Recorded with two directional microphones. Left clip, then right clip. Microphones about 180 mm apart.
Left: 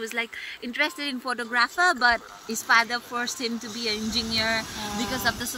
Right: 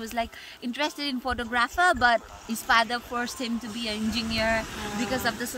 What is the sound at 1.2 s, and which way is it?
Speech, 40° right (ahead or behind).